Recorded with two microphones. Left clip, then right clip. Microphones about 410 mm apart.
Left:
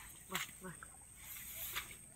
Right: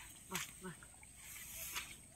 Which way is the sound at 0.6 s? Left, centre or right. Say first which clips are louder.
Even; centre.